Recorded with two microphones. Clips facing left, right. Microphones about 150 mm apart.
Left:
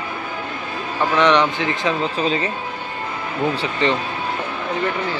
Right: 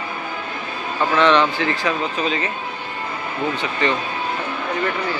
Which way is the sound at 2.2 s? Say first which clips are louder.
Left 3 dB; 35° left (ahead or behind).